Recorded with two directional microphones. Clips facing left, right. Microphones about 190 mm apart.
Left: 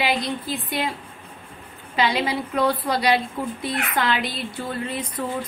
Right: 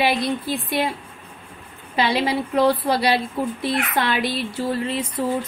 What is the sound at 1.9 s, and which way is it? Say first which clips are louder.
A woman's voice: right 2 dB; 30° right (ahead or behind).